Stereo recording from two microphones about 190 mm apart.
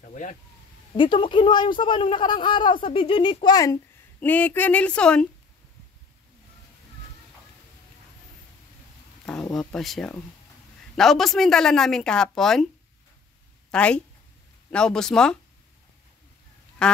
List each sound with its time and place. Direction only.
0.0 s a sound: 40° left (ahead or behind)
0.9 s a man's voice: 25° left (ahead or behind); by 5.2 s 5° left (ahead or behind)
9.5 s speech: centre (ahead or behind)
13.7 s a woman's voice: 5° left (ahead or behind)
16.8 s duck: 5° left (ahead or behind)